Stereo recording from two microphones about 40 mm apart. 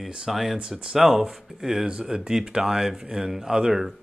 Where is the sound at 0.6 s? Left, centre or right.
Right.